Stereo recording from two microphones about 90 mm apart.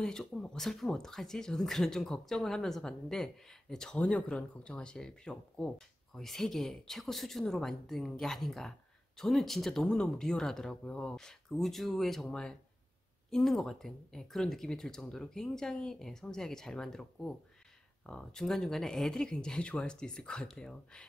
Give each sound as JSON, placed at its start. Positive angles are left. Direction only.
{"t": 0.0, "sound": "speech", "side_deg": 5}